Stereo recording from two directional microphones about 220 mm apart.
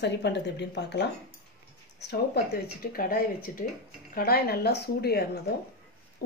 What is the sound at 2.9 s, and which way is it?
A woman's voice, 40° left (ahead or behind).